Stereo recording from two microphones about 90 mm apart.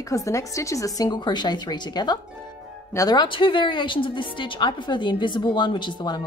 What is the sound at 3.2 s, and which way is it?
Speech, 70° left (ahead or behind).